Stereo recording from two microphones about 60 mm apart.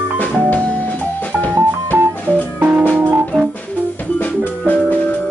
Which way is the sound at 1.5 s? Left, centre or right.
Right.